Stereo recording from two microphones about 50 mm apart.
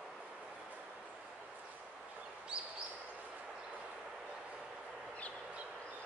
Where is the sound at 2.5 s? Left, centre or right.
Centre.